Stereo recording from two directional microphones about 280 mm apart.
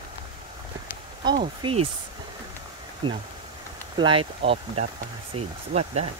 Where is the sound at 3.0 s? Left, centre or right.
Centre.